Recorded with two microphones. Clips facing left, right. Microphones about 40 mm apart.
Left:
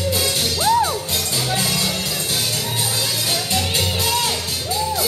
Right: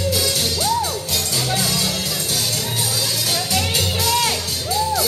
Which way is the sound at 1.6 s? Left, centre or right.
Centre.